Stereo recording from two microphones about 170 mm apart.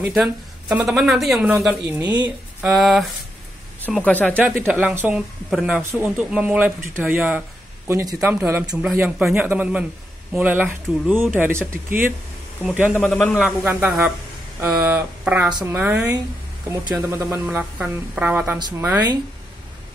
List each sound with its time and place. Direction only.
0.0 s speech: 5° right (ahead or behind)
2.0 s speech: 25° right (ahead or behind)
2.2 s a sound: 5° right (ahead or behind)
4.0 s a man's voice: 10° left (ahead or behind)
4.4 s speech: 10° right (ahead or behind)
13.0 s a man's voice: 10° left (ahead or behind)
13.4 s speech: 5° right (ahead or behind)
18.6 s speech: 25° right (ahead or behind)